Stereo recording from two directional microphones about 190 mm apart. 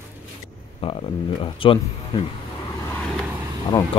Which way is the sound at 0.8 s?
25° left (ahead or behind).